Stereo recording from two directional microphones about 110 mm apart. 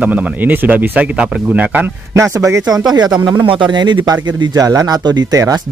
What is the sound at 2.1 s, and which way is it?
Speech, 25° right (ahead or behind).